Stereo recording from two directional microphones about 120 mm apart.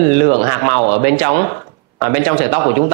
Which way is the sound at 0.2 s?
30° right (ahead or behind).